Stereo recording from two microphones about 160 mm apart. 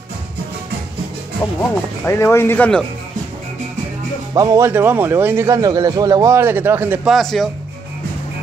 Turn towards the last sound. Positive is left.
turn(degrees=0)  # may be behind; listen again after turning